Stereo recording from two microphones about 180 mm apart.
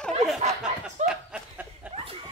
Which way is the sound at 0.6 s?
5° right (ahead or behind).